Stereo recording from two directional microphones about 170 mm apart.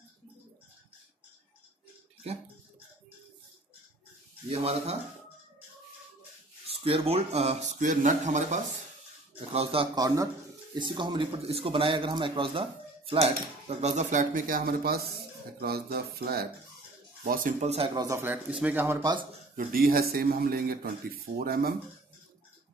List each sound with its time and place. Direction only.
4.5 s a man's voice: 35° right (ahead or behind)
6.7 s a man's voice: 35° right (ahead or behind)
9.9 s a man's voice: 20° right (ahead or behind); by 16.4 s 65° right (ahead or behind)
17.2 s speech: 50° right (ahead or behind)
17.9 s speech: 20° right (ahead or behind)
19.5 s a man's voice: 60° right (ahead or behind)